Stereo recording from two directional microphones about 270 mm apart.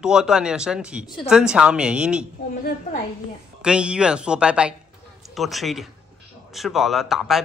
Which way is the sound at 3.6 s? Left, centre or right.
Centre.